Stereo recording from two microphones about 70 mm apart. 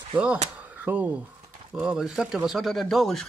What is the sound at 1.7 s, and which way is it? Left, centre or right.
A man's voice, centre.